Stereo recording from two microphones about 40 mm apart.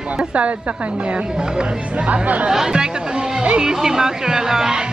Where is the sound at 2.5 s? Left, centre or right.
Centre.